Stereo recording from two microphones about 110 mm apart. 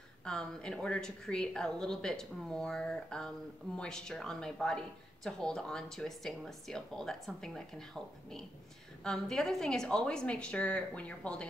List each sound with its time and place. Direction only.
0.2 s a woman's voice: 5° left (ahead or behind)